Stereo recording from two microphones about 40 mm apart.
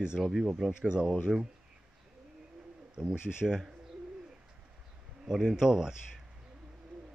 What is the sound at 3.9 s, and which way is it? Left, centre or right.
Bird, right.